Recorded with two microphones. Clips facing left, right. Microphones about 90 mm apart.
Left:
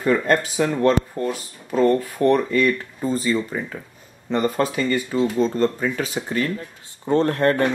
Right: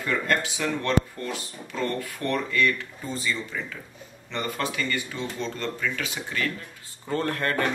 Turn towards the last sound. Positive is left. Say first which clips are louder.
# left 8 dB
turn(degrees=25)  # may be behind; listen again after turning